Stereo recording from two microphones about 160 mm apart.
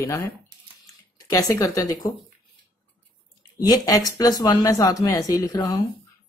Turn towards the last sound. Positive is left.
turn(degrees=20)  # may be behind; listen again after turning